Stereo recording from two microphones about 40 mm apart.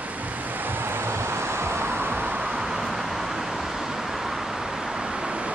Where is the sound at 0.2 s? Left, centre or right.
Right.